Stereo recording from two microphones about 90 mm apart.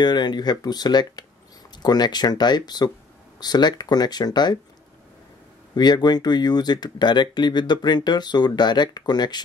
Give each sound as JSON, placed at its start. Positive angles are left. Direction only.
{"t": 0.0, "sound": "speech", "side_deg": 55}
{"t": 5.8, "sound": "speech", "side_deg": 50}